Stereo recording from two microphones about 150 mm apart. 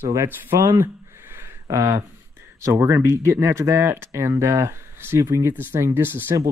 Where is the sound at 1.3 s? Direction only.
20° right (ahead or behind).